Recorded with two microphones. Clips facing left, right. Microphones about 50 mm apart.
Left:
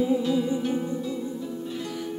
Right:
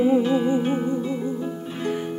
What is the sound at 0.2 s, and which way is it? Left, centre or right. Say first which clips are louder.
Music: right 4 dB; right.